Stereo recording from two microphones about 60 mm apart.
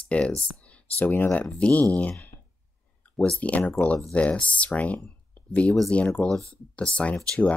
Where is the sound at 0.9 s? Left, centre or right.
Left.